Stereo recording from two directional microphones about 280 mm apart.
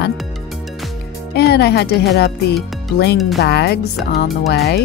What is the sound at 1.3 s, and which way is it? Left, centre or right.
Speech, left.